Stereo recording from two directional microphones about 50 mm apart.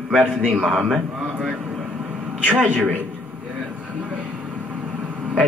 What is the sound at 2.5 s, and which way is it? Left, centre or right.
Speech, right.